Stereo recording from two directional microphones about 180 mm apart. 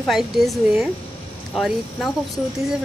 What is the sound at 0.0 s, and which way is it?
Speech, centre (ahead or behind).